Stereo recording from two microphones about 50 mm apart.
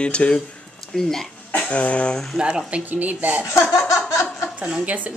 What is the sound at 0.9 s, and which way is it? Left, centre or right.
Speech, centre.